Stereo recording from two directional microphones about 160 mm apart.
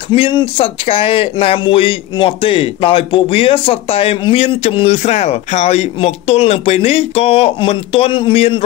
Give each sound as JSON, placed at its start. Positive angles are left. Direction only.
{"t": 0.1, "sound": "speech", "side_deg": 30}